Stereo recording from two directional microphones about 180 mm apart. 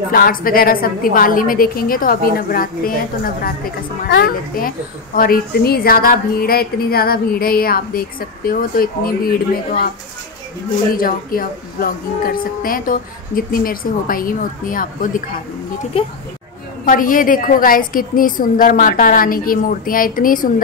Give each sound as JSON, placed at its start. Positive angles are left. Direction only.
{"t": 0.1, "sound": "speech", "side_deg": 55}
{"t": 4.1, "sound": "a child's voice", "side_deg": 55}
{"t": 11.0, "sound": "speech", "side_deg": 55}
{"t": 16.0, "sound": "speech", "side_deg": 30}
{"t": 16.8, "sound": "speech", "side_deg": 50}